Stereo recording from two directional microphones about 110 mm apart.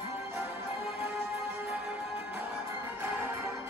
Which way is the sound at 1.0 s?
15° right (ahead or behind).